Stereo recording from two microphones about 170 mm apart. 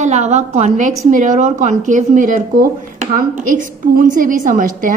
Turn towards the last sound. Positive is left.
turn(degrees=-50)  # may be behind; listen again after turning